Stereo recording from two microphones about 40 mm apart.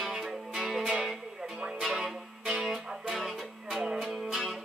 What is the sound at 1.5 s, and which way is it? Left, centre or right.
Music, right.